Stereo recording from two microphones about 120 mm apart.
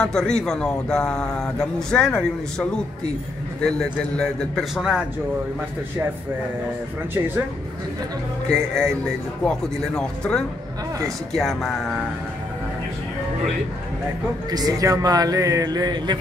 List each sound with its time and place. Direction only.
0.0 s a man's voice: 5° left (ahead or behind)
3.6 s a man's voice: 5° left (ahead or behind)
4.7 s speech: 5° right (ahead or behind)
8.5 s a man's voice: 5° left (ahead or behind)
14.5 s a man's voice: 30° right (ahead or behind)